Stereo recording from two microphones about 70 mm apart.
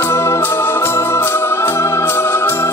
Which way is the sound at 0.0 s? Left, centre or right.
Left.